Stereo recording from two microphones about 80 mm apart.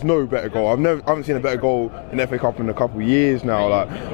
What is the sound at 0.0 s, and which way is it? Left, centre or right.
Speech, left.